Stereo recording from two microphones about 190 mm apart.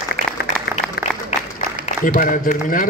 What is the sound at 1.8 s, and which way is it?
Speech, 45° left (ahead or behind).